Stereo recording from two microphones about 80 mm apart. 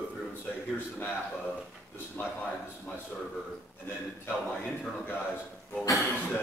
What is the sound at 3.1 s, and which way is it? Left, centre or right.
Speech, centre.